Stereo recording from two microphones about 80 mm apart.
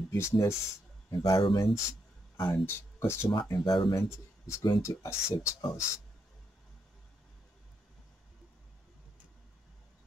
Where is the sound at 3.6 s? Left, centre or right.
Left.